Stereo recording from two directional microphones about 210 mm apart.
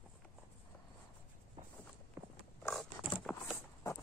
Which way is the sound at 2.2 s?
15° right (ahead or behind).